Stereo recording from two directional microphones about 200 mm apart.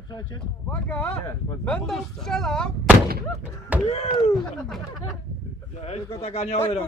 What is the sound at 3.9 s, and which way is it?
Speech, 35° left (ahead or behind).